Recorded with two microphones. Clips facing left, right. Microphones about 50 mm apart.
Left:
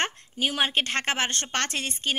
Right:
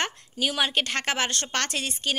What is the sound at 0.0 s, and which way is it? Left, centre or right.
A woman's voice, left.